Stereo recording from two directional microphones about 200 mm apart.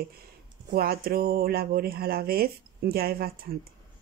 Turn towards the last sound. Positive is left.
turn(degrees=-50)  # may be behind; listen again after turning